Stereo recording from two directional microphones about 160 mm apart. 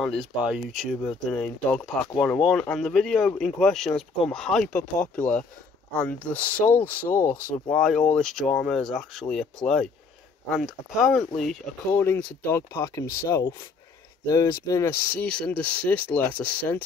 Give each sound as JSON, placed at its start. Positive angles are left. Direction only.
{"t": 0.0, "sound": "speech", "side_deg": -5}
{"t": 11.9, "sound": "speech", "side_deg": 15}
{"t": 15.2, "sound": "speech", "side_deg": 5}